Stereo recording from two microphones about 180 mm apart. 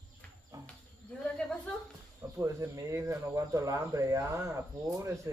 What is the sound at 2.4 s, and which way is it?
Speech, 15° right (ahead or behind).